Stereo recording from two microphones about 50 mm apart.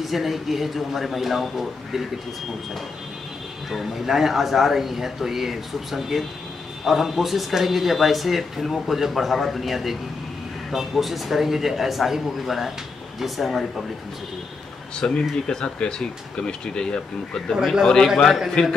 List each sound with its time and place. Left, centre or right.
0.0 s speech: centre
3.7 s speech: centre
15.0 s speech: centre
18.0 s speech: centre